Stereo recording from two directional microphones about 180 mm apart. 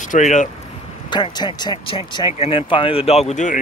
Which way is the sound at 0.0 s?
45° left (ahead or behind).